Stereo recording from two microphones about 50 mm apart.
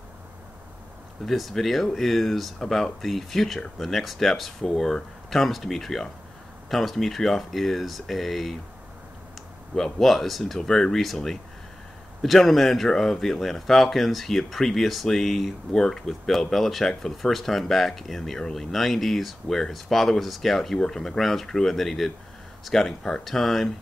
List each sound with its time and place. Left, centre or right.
1.2 s speech: centre
9.9 s speech: centre